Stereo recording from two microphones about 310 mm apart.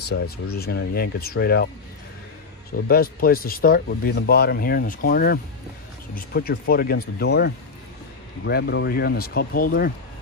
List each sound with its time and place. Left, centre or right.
0.0 s speech: left
2.9 s speech: left
8.5 s speech: left